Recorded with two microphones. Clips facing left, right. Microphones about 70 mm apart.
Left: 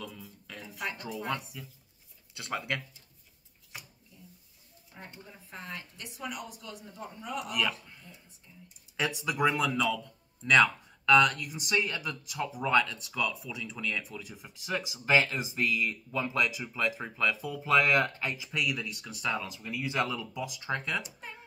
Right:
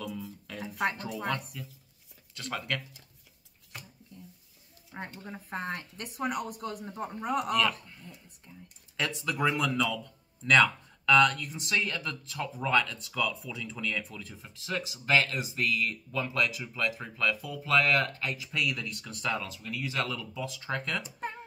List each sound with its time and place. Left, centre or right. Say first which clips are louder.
0.0 s a sound: right 6 dB; centre
2.3 s speech: even; centre
3.7 s a sound: right 1 dB; centre
5.2 s speech: right 10 dB; right
8.9 s speech: left 1 dB; centre
18.5 s speech: right 1 dB; centre
19.4 s speech: left 1 dB; centre
21.2 s music: right 8 dB; right